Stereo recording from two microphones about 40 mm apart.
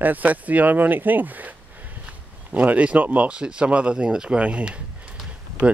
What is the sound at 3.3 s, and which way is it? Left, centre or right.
Speech, right.